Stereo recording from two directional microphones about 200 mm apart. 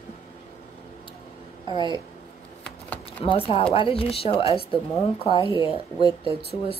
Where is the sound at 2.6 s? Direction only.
5° left (ahead or behind).